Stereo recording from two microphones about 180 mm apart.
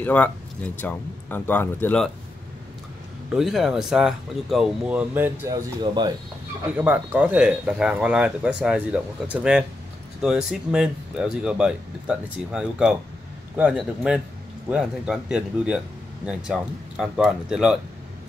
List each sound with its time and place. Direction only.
0.0 s speech: 10° left (ahead or behind)
3.3 s speech: centre (ahead or behind); by 6.1 s 25° right (ahead or behind)
6.8 s speech: 10° right (ahead or behind)